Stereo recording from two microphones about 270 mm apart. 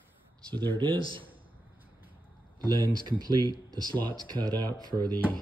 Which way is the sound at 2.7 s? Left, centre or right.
Centre.